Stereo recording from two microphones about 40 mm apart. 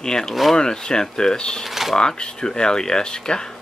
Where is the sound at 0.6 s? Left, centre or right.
Centre.